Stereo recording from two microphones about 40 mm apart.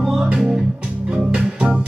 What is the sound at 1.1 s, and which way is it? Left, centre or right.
Music, right.